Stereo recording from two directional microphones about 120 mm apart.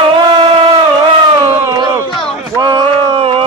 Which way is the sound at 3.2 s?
50° right (ahead or behind).